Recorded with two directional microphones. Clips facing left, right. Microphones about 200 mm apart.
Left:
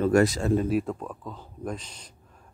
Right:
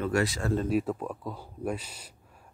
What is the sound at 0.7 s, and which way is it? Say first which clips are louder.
Speech: left 1 dB; centre (ahead or behind).